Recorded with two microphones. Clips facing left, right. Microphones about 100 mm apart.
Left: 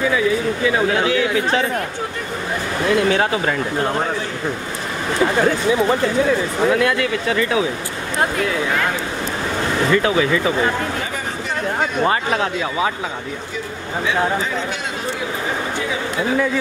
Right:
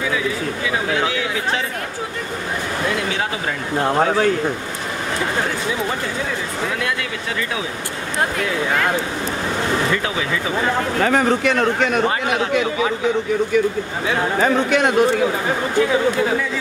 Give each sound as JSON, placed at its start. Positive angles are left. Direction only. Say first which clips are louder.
{"t": 11.0, "sound": "speech", "louder": "right 9 dB", "side_deg": -70}
{"t": 14.4, "sound": "speech", "louder": "right 8 dB", "side_deg": -65}